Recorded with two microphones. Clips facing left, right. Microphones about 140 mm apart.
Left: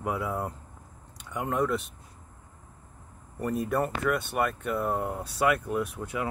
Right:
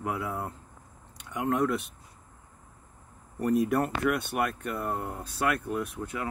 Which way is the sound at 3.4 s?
Centre (ahead or behind).